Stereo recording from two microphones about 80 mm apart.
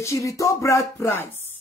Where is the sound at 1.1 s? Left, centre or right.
Left.